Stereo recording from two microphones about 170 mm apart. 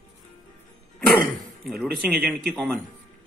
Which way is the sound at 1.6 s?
Centre (ahead or behind).